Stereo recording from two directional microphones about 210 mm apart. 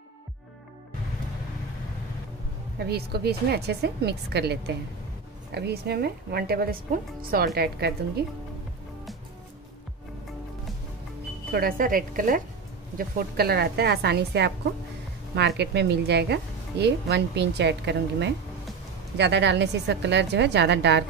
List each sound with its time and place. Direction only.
2.8 s speech: 50° right (ahead or behind)
11.5 s a woman's voice: 45° right (ahead or behind)